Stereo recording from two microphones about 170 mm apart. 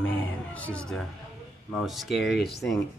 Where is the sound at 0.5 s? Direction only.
10° left (ahead or behind).